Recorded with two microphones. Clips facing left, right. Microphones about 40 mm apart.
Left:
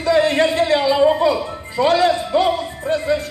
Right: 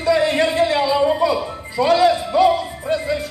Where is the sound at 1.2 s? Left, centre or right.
Left.